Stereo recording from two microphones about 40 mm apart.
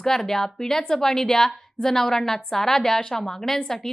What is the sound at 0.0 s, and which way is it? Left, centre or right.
Speech, centre.